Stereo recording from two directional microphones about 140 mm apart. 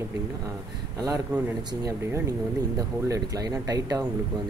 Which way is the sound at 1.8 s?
25° right (ahead or behind).